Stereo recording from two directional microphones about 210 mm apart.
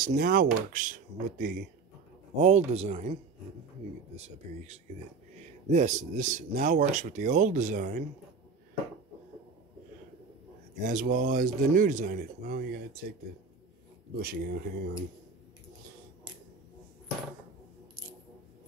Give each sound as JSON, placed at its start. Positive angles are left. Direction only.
{"t": 0.0, "sound": "speech", "side_deg": -45}
{"t": 10.8, "sound": "speech", "side_deg": -40}
{"t": 14.1, "sound": "speech", "side_deg": -45}